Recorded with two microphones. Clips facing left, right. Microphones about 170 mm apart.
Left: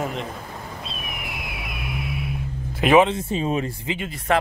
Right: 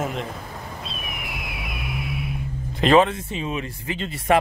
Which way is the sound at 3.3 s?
35° left (ahead or behind).